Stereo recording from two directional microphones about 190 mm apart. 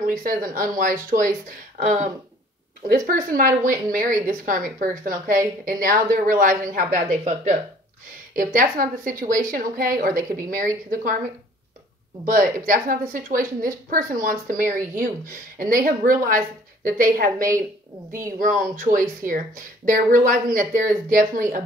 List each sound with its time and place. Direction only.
0.2 s a woman's voice: 45° right (ahead or behind)
3.1 s a woman's voice: 45° right (ahead or behind)
12.3 s a woman's voice: 45° right (ahead or behind)